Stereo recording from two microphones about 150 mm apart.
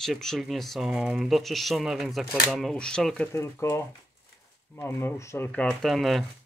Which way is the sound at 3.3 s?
15° left (ahead or behind).